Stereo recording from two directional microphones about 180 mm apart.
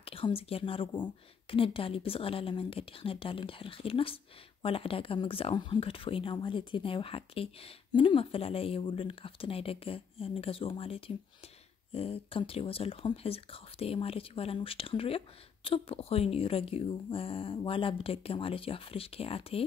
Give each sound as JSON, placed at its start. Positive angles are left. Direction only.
{"t": 0.0, "sound": "speech", "side_deg": 30}